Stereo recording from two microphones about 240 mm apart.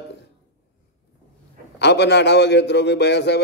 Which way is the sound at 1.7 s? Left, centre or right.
Left.